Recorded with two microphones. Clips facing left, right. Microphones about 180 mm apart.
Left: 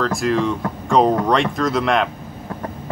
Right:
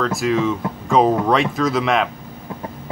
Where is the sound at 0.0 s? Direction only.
Centre (ahead or behind).